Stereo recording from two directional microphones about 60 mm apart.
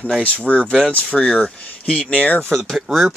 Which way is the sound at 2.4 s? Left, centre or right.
Centre.